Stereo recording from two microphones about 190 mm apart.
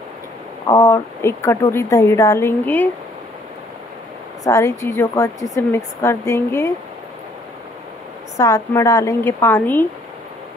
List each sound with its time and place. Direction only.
0.7 s speech: 15° left (ahead or behind)
4.5 s speech: 15° left (ahead or behind)
8.4 s speech: 15° left (ahead or behind)